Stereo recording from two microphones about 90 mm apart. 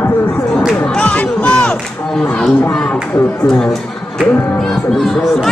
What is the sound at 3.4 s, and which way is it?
Speech, 5° left (ahead or behind).